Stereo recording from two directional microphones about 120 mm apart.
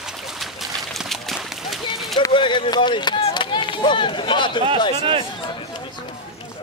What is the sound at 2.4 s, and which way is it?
Speech, 45° left (ahead or behind).